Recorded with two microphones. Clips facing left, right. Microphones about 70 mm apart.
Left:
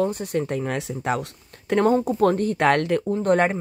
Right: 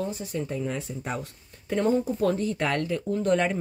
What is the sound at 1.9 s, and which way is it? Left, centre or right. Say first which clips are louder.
Speech: left 5 dB; left.